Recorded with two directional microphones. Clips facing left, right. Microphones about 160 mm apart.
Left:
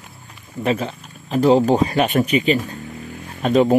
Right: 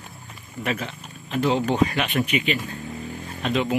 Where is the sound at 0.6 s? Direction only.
35° left (ahead or behind).